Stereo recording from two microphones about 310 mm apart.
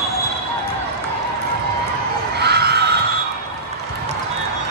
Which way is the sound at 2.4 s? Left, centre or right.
Right.